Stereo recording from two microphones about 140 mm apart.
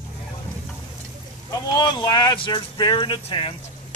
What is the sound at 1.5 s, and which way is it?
Speech, 30° left (ahead or behind).